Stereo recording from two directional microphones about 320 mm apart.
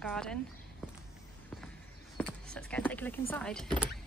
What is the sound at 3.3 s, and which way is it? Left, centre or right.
Speech, centre.